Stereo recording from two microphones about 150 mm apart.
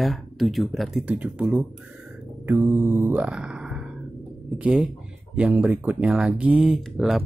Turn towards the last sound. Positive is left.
turn(degrees=-5)  # may be behind; listen again after turning